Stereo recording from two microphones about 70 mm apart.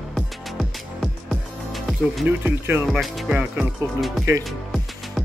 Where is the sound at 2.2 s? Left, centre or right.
Right.